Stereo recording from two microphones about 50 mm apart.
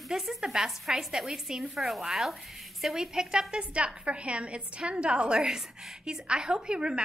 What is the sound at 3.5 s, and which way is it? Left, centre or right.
A woman's voice, right.